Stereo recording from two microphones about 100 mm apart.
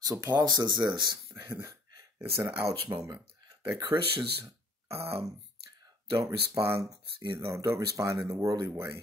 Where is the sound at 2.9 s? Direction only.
25° right (ahead or behind).